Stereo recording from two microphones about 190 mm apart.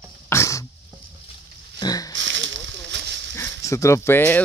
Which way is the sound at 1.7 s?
20° left (ahead or behind).